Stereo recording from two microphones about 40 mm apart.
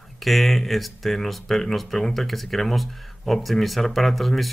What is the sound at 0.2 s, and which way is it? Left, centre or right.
Speech, centre.